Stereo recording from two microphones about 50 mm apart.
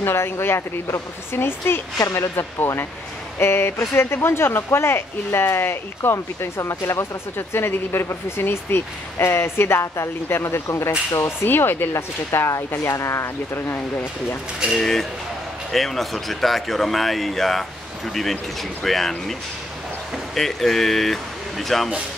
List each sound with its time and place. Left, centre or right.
0.0 s speech: left
11.2 s speech: left
11.9 s speech: left
14.8 s speech: centre
20.3 s speech: centre